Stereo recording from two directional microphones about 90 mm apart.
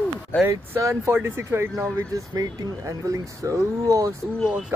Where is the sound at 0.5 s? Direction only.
35° right (ahead or behind).